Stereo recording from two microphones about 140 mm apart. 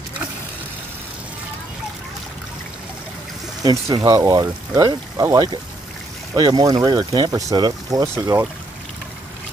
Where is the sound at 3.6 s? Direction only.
25° right (ahead or behind).